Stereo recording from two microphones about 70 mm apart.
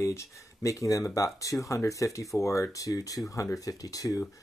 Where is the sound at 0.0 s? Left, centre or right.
Left.